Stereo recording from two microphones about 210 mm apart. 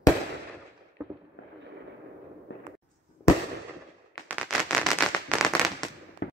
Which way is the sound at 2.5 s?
55° left (ahead or behind).